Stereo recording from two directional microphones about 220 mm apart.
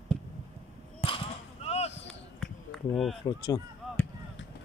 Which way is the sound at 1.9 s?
55° left (ahead or behind).